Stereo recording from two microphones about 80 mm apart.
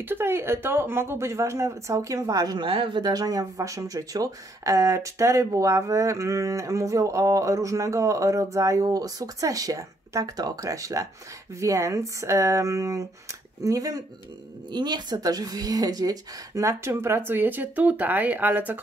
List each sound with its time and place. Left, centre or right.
0.0 s speech: right
14.7 s speech: right
16.6 s speech: right